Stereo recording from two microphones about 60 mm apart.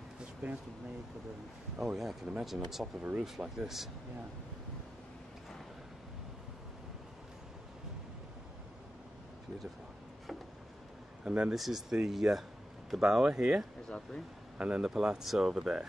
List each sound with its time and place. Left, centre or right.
1.8 s speech: centre
3.0 s speech: right
3.3 s speech: centre
11.2 s speech: centre
11.5 s speech: centre
13.8 s speech: centre
14.6 s speech: centre